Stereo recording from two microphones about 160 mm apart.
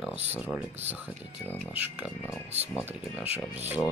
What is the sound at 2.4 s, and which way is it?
Speech, 40° right (ahead or behind).